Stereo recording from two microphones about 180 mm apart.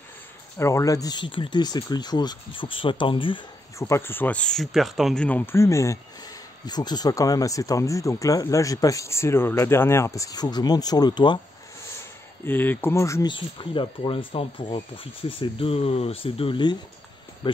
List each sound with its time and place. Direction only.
0.6 s speech: 15° left (ahead or behind)
3.7 s speech: 15° left (ahead or behind)
12.4 s speech: 10° left (ahead or behind); by 16.7 s 30° left (ahead or behind)